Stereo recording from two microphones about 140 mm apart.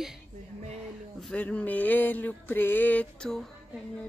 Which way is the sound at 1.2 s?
10° left (ahead or behind).